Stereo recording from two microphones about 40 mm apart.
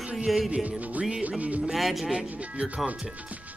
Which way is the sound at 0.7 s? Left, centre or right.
Right.